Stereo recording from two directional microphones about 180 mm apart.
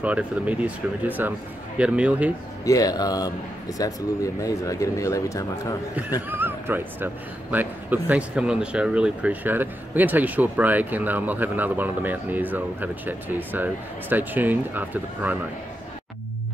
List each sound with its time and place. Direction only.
0.0 s speech: 10° right (ahead or behind)
2.6 s speech: 20° left (ahead or behind)
6.2 s speech: 10° right (ahead or behind)